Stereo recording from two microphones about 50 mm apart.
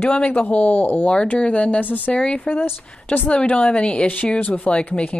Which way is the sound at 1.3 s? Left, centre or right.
Left.